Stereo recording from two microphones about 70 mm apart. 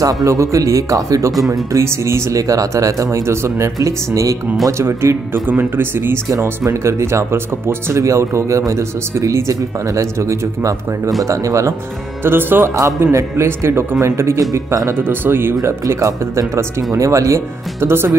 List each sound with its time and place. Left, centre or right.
0.0 s speech: right
4.6 s speech: right
5.5 s speech: right
6.6 s speech: right
12.2 s speech: right
15.0 s speech: right
15.6 s speech: right